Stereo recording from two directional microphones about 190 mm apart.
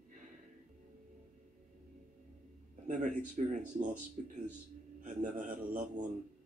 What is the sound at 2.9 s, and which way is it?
A man's voice, 40° right (ahead or behind).